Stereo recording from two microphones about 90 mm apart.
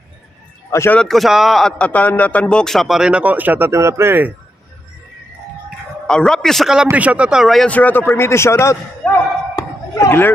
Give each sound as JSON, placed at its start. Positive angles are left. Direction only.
{"t": 0.7, "sound": "a man's voice", "side_deg": 30}
{"t": 0.9, "sound": "a man's voice", "side_deg": 5}
{"t": 6.0, "sound": "a man's voice", "side_deg": 5}
{"t": 6.9, "sound": "speech", "side_deg": -15}
{"t": 7.6, "sound": "a man's voice", "side_deg": 15}
{"t": 9.0, "sound": "slam", "side_deg": 15}
{"t": 9.6, "sound": "a sound", "side_deg": 40}